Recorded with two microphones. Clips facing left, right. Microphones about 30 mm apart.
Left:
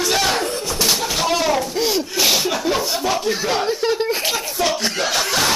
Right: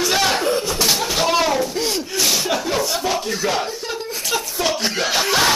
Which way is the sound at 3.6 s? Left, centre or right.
Left.